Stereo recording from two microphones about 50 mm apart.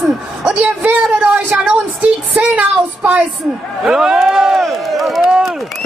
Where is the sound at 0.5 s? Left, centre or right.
Right.